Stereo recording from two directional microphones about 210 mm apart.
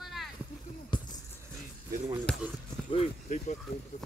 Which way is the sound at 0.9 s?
25° left (ahead or behind).